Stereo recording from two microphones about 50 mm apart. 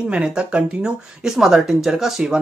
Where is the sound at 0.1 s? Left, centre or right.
Centre.